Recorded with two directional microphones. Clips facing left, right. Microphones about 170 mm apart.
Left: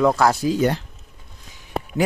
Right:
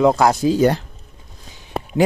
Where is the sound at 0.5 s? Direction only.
40° right (ahead or behind).